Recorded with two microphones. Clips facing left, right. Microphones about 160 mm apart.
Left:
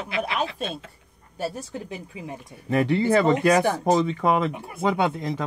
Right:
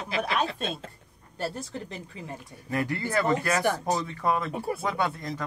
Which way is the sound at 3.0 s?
20° left (ahead or behind).